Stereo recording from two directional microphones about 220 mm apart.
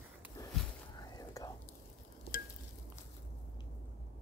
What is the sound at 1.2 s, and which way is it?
Whispering, 15° left (ahead or behind).